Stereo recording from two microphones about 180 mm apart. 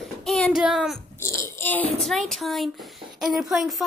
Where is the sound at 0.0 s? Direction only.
Centre (ahead or behind).